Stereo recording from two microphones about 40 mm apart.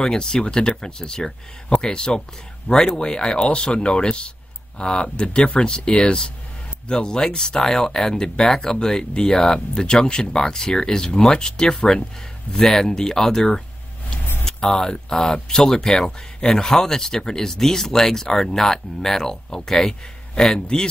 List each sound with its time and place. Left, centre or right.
0.0 s speech: centre
2.7 s speech: left
3.0 s speech: left